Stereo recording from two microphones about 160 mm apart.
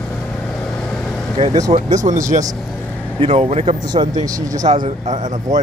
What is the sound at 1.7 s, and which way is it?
Speech, 50° right (ahead or behind).